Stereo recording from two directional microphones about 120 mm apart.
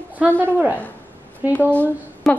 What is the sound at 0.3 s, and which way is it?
Speech, 10° left (ahead or behind).